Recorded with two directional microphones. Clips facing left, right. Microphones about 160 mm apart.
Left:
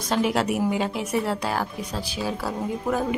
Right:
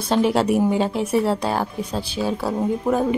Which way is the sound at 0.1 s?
30° right (ahead or behind).